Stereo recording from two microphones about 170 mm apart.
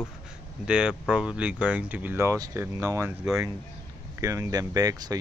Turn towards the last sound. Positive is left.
turn(degrees=-20)  # may be behind; listen again after turning